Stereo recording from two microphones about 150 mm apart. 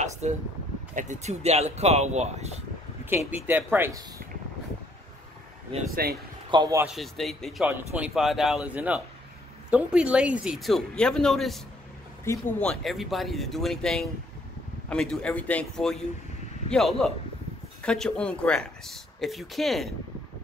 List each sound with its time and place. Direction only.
0.2 s speech: 50° right (ahead or behind)
3.1 s speech: 15° right (ahead or behind)
6.0 s speech: 90° right
6.5 s speech: 30° right (ahead or behind)
6.9 s speech: centre (ahead or behind)
12.3 s speech: 15° left (ahead or behind)
12.8 s speech: centre (ahead or behind)